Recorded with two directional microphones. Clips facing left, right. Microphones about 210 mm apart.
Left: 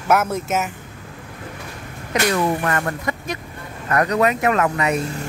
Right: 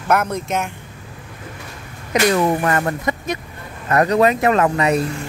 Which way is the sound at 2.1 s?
20° right (ahead or behind).